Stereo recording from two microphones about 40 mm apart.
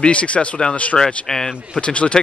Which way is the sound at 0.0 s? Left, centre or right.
Left.